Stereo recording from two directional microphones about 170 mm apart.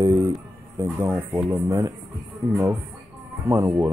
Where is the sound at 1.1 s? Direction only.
5° right (ahead or behind).